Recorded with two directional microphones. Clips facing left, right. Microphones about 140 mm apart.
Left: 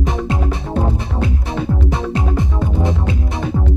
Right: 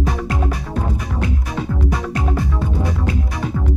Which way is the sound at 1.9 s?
25° left (ahead or behind).